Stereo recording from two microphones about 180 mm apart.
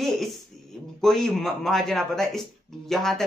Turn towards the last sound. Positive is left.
turn(degrees=0)  # may be behind; listen again after turning